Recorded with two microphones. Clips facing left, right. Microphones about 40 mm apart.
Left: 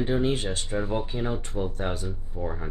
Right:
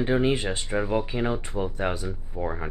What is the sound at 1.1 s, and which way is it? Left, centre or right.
Speech, right.